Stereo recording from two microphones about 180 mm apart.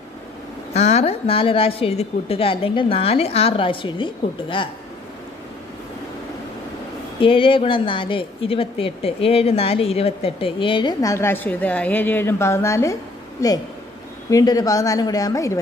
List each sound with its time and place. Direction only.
0.7 s a woman's voice: 35° left (ahead or behind)
7.2 s a woman's voice: 30° left (ahead or behind)